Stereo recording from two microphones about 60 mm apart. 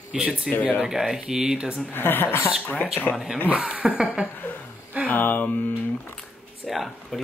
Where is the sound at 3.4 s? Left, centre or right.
Right.